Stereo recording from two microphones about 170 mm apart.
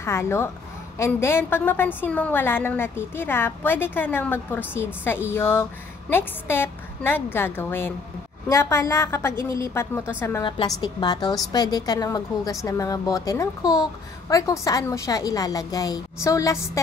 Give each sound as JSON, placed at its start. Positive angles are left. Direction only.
{"t": 0.0, "sound": "a woman's voice", "side_deg": 15}
{"t": 10.8, "sound": "a woman's voice", "side_deg": 25}